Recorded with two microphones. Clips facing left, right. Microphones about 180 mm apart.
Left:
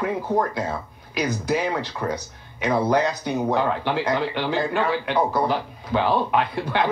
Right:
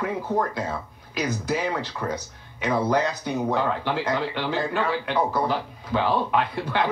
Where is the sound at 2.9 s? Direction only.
65° left (ahead or behind).